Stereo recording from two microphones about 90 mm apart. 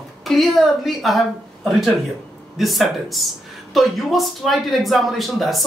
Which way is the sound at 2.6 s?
Centre (ahead or behind).